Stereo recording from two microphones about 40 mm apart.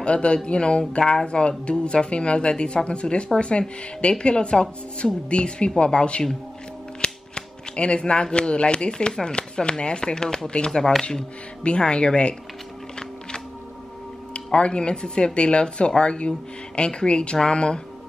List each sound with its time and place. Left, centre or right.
0.0 s a woman's voice: left; by 11.1 s centre
11.6 s a woman's voice: left
14.3 s a woman's voice: left